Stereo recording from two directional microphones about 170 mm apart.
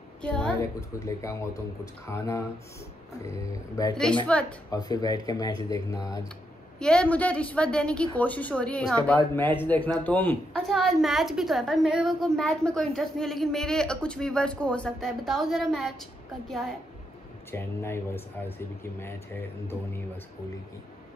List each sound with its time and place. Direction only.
0.2 s a woman's voice: 5° left (ahead or behind)
0.6 s speech: 15° left (ahead or behind)
3.9 s a woman's voice: 5° left (ahead or behind)
4.6 s speech: 20° left (ahead or behind)
6.8 s speech: 5° left (ahead or behind)
10.7 s a woman's voice: centre (ahead or behind)
17.5 s speech: 15° left (ahead or behind)